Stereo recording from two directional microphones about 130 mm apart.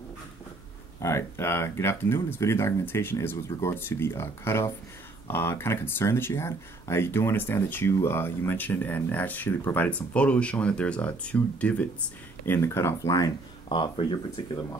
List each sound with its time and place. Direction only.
0.9 s speech: 20° left (ahead or behind)
13.7 s speech: 40° left (ahead or behind)